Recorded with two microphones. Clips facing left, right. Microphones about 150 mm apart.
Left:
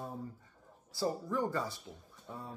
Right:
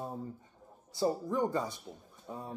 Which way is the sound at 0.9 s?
20° right (ahead or behind).